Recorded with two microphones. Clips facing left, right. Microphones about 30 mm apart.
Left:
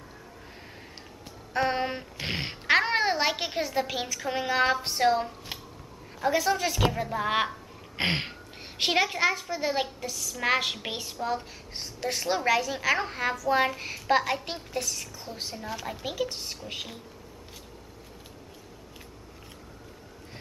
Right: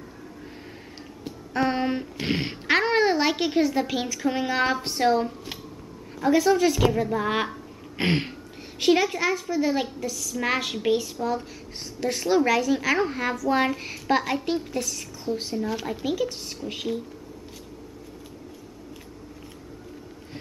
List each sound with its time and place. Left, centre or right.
1.5 s a woman's voice: centre
8.7 s a woman's voice: left; by 15.7 s centre
15.7 s speech: centre
16.0 s a woman's voice: centre